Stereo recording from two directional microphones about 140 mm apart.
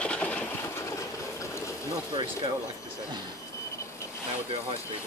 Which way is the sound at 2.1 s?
35° right (ahead or behind).